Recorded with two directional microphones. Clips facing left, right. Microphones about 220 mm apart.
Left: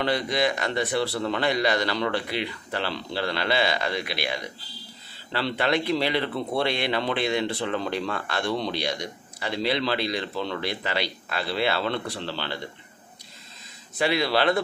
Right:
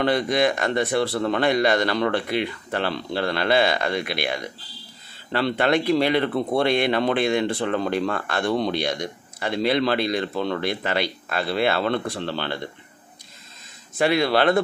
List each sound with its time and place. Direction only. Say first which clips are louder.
0.0 s speech: right 4 dB; 50° right (ahead or behind)
13.9 s speech: right 4 dB; 50° right (ahead or behind)